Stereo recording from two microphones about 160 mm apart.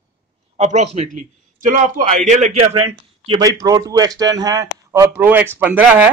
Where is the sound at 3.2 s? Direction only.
25° right (ahead or behind).